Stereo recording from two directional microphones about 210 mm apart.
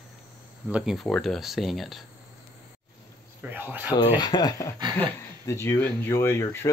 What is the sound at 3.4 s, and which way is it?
Speech, 10° right (ahead or behind).